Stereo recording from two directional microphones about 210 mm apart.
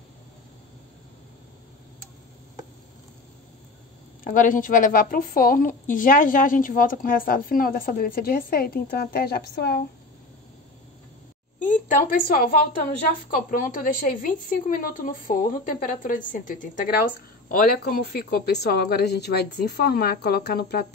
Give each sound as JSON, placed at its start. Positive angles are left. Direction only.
{"t": 4.2, "sound": "a woman's voice", "side_deg": 40}
{"t": 11.6, "sound": "a woman's voice", "side_deg": 40}
{"t": 13.5, "sound": "a woman's voice", "side_deg": 40}